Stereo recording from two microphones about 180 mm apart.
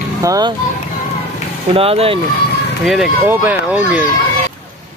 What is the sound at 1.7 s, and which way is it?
Speech, 35° right (ahead or behind).